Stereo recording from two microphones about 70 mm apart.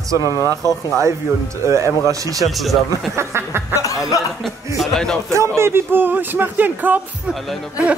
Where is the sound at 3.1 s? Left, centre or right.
Right.